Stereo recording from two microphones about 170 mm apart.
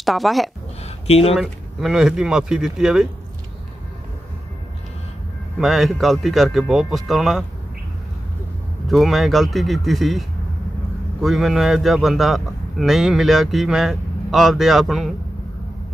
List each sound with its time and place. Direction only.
0.0 s speech: centre (ahead or behind)
0.8 s a sound: 35° left (ahead or behind)
1.3 s a man's voice: centre (ahead or behind)
5.6 s a man's voice: centre (ahead or behind)
8.8 s a man's voice: centre (ahead or behind)